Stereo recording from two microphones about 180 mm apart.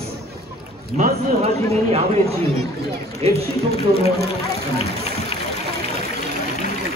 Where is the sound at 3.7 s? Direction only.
35° left (ahead or behind).